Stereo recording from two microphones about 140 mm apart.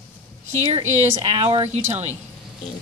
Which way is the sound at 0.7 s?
55° right (ahead or behind).